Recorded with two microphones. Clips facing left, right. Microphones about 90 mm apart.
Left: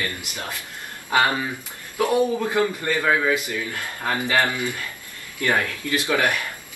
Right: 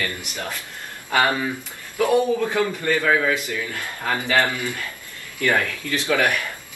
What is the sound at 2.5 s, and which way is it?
Speech, 15° left (ahead or behind).